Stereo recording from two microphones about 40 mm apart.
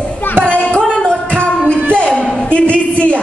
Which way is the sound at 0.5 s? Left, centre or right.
Left.